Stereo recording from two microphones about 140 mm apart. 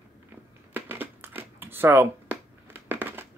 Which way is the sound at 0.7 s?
15° right (ahead or behind).